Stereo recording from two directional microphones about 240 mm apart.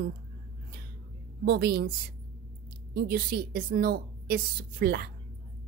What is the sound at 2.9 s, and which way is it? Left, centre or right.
A woman's voice, right.